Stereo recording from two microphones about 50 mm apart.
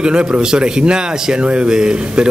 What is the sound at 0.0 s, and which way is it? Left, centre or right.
A man's voice, right.